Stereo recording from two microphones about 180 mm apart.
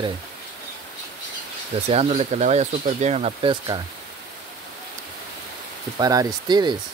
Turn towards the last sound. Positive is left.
turn(degrees=-25)  # may be behind; listen again after turning